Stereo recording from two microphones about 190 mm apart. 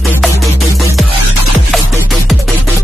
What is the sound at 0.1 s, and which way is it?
Music, centre (ahead or behind).